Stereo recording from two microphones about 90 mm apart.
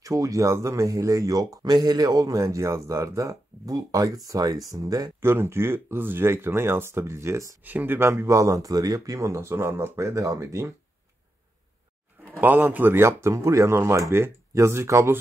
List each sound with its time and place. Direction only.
0.0 s speech: 40° right (ahead or behind)
5.2 s speech: 30° right (ahead or behind)
7.6 s speech: 20° right (ahead or behind)
12.4 s speech: 20° right (ahead or behind)